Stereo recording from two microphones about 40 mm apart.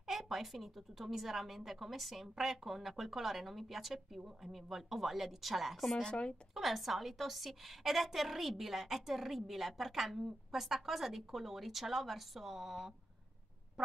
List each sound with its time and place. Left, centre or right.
0.0 s a woman's voice: centre
6.0 s speech: left
6.5 s a woman's voice: centre